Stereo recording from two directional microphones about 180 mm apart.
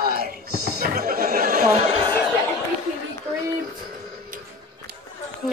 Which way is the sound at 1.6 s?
30° right (ahead or behind).